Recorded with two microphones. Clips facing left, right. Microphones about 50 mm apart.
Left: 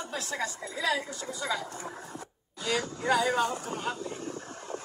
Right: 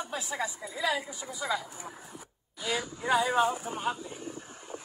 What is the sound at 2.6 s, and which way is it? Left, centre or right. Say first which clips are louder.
Speech: left 2 dB; left.